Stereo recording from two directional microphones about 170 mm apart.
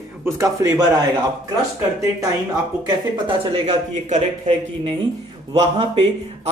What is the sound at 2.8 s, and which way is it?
Speech, 30° right (ahead or behind).